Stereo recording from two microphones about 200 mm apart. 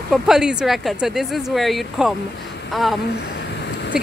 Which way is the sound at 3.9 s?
5° right (ahead or behind).